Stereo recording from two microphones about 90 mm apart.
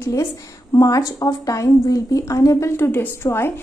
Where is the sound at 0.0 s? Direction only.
30° left (ahead or behind).